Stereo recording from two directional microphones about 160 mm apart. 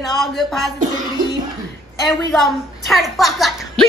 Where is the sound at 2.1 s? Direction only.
Centre (ahead or behind).